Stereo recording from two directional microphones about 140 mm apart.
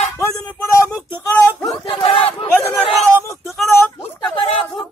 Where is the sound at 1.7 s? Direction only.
40° left (ahead or behind).